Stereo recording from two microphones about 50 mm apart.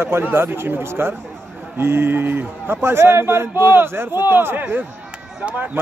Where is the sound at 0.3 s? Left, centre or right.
Right.